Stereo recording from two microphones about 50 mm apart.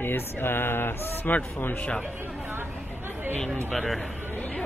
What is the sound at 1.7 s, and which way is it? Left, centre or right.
Speech, left.